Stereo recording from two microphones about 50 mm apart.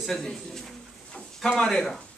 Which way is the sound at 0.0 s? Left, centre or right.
Centre.